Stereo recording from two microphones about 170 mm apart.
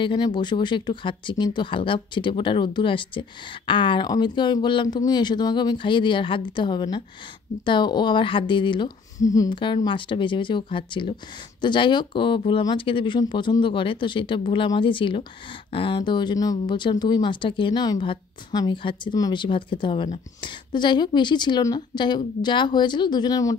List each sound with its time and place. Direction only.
0.0 s speech: 25° left (ahead or behind)